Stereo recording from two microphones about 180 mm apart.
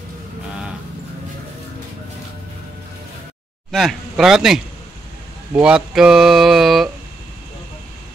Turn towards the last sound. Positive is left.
turn(degrees=0)  # may be behind; listen again after turning